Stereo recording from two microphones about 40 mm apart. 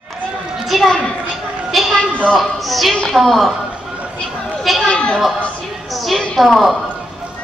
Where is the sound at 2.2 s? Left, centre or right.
Centre.